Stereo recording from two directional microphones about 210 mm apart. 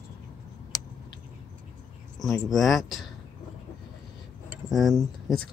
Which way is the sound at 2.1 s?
Centre (ahead or behind).